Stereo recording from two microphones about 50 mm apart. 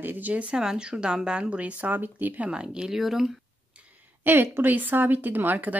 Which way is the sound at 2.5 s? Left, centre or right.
Centre.